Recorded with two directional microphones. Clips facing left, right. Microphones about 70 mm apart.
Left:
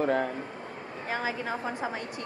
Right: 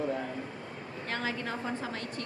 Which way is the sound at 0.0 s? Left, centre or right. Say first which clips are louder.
Left 7 dB; left.